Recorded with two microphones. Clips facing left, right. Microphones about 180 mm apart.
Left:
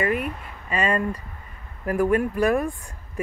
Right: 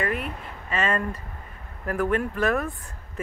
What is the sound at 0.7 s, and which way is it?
Speech, 10° left (ahead or behind).